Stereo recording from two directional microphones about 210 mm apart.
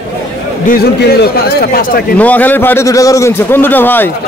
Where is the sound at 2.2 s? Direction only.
10° left (ahead or behind).